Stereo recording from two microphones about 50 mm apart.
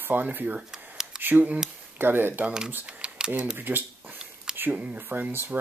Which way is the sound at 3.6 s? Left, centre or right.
Right.